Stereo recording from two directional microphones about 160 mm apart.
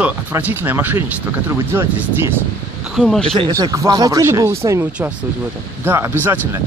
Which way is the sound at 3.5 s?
20° right (ahead or behind).